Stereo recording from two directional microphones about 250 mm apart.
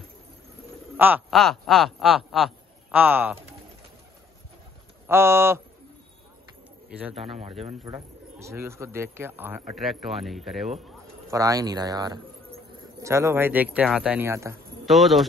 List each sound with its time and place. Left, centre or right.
0.9 s speech: centre
5.0 s speech: centre
7.2 s speech: right
7.9 s speech: centre
11.2 s speech: centre
14.9 s a man's voice: centre